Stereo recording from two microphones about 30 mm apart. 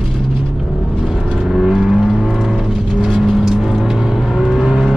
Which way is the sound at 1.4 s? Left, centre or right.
Centre.